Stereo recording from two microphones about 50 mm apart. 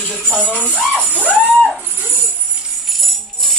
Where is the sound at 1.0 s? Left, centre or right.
Right.